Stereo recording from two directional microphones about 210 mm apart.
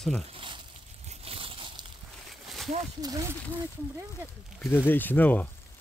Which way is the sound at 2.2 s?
Centre (ahead or behind).